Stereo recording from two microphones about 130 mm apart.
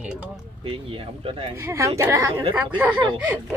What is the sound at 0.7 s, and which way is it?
Speech, 45° right (ahead or behind).